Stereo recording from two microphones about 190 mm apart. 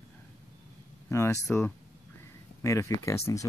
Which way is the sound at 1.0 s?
15° left (ahead or behind).